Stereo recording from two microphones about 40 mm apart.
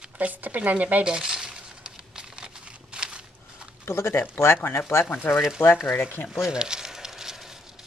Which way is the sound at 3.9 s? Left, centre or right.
Left.